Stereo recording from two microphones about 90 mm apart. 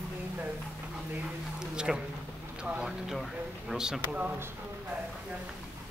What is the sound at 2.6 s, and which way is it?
Speech, 10° right (ahead or behind).